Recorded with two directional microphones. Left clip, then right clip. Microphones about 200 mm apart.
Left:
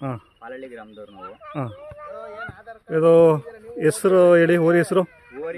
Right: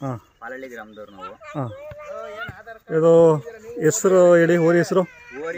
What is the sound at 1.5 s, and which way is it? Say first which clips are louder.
Speech: even; centre (ahead or behind).